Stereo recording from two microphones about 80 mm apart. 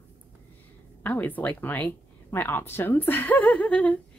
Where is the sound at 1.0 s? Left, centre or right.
Left.